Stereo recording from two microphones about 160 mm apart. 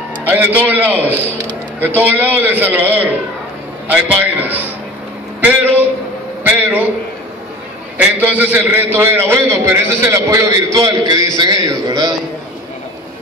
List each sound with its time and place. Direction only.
0.2 s a man's voice: 10° right (ahead or behind)
8.2 s a man's voice: 10° right (ahead or behind)